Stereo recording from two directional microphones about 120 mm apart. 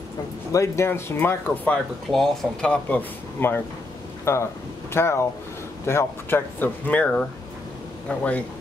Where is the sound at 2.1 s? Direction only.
5° left (ahead or behind).